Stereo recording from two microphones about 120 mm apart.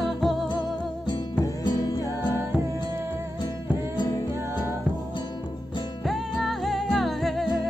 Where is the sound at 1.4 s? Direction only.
30° left (ahead or behind).